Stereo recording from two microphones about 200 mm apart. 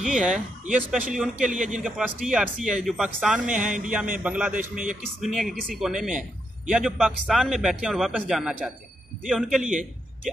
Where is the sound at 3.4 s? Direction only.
40° right (ahead or behind).